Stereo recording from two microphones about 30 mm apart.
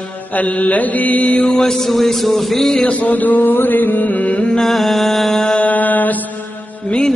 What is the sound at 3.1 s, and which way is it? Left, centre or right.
Music, left.